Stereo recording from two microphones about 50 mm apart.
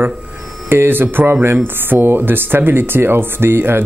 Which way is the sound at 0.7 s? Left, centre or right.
Right.